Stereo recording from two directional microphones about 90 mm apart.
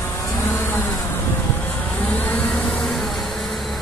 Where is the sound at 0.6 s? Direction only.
25° left (ahead or behind).